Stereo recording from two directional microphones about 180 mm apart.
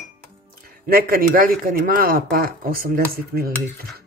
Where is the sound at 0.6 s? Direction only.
55° right (ahead or behind).